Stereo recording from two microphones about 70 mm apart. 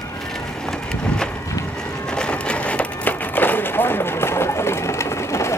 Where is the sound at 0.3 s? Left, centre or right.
Centre.